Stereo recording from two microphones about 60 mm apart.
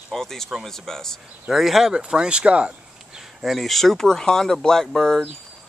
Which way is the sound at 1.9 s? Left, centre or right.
Centre.